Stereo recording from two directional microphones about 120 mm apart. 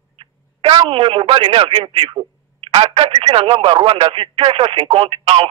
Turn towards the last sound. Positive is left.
turn(degrees=-50)  # may be behind; listen again after turning